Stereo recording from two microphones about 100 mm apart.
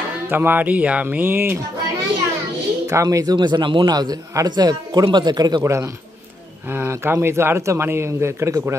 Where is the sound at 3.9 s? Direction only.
40° right (ahead or behind).